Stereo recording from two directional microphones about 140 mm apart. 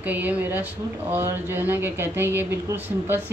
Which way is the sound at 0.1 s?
10° right (ahead or behind).